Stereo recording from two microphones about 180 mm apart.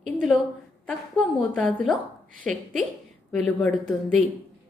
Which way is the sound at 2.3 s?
45° right (ahead or behind).